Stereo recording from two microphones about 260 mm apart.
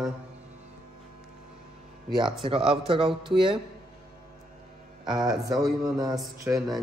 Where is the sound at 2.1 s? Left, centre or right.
Centre.